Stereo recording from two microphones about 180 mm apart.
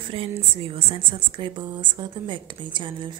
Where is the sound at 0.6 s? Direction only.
30° right (ahead or behind).